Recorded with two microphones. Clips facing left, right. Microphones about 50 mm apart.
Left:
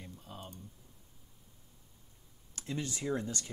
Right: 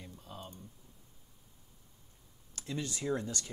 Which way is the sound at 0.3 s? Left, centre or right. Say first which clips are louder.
Right 1 dB; left.